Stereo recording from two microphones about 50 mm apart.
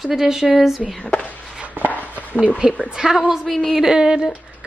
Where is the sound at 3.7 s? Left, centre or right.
Centre.